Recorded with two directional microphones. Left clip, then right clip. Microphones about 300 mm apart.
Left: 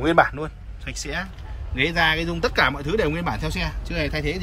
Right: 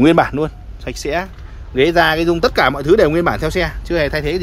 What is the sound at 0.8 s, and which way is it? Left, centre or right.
Speech, centre.